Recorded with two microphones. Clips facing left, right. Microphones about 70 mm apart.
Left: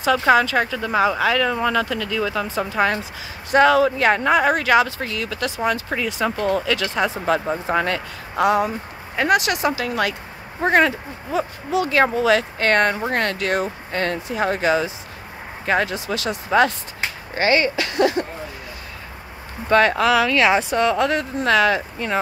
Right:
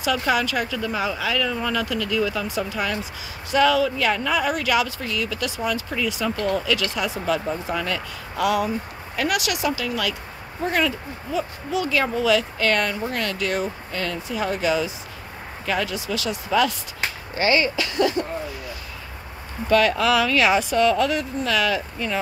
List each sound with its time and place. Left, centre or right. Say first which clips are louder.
0.0 s speech: left 6 dB; left
0.9 s speech: left 8 dB; left
1.5 s speech: left 4 dB; left
19.7 s speech: left 2 dB; left